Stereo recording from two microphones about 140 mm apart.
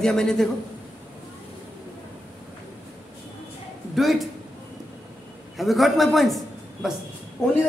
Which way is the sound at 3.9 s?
Centre (ahead or behind).